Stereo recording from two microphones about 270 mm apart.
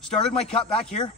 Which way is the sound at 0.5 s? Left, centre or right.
Centre.